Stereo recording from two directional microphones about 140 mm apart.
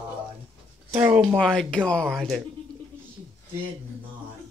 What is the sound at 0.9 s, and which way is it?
Speech, 10° right (ahead or behind).